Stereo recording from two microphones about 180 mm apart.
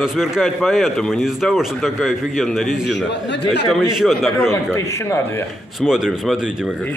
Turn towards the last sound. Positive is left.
turn(degrees=-5)  # may be behind; listen again after turning